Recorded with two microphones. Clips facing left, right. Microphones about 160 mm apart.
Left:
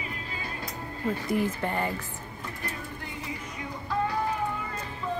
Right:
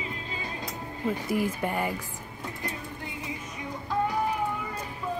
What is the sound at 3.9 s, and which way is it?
Music, 15° right (ahead or behind).